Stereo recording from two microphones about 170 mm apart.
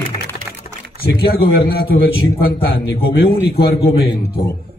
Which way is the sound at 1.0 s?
65° left (ahead or behind).